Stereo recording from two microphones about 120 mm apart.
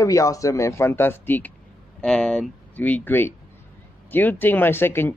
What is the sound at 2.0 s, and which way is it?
Speech, 5° left (ahead or behind).